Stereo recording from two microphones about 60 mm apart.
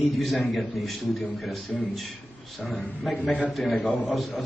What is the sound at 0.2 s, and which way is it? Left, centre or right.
A man's voice, centre.